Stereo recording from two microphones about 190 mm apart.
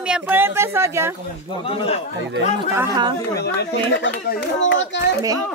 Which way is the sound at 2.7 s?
15° right (ahead or behind).